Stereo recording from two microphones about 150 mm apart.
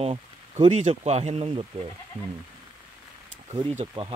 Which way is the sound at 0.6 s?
50° right (ahead or behind).